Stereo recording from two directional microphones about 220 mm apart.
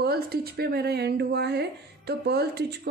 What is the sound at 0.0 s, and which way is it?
Speech, 45° right (ahead or behind).